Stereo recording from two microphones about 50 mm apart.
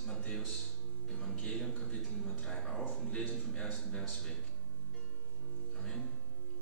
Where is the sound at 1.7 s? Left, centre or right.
Centre.